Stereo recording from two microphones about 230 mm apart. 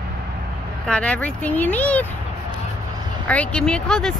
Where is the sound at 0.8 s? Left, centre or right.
Centre.